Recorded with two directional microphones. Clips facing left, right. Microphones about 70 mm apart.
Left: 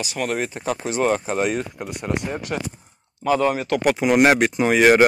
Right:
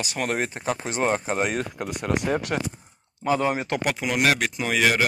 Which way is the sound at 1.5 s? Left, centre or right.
Right.